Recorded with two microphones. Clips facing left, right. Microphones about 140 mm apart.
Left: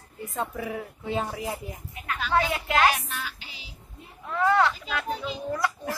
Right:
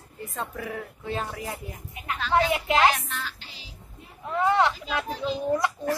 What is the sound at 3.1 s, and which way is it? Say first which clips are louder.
Speech: even; 5° left (ahead or behind).